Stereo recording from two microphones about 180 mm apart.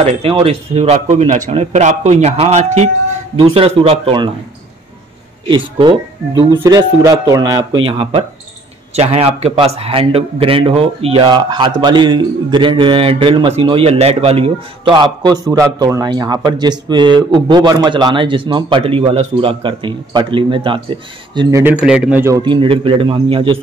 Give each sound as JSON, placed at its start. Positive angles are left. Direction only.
{"t": 0.0, "sound": "speech", "side_deg": -30}
{"t": 5.8, "sound": "a man's voice", "side_deg": -25}
{"t": 7.8, "sound": "a man's voice", "side_deg": -30}
{"t": 21.5, "sound": "a man's voice", "side_deg": -15}
{"t": 21.8, "sound": "a man's voice", "side_deg": -5}
{"t": 22.4, "sound": "a man's voice", "side_deg": -25}